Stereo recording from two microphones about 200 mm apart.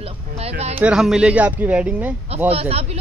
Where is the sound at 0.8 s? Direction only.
5° right (ahead or behind).